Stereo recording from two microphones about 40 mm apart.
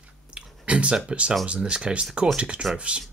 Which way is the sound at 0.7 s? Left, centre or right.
Right.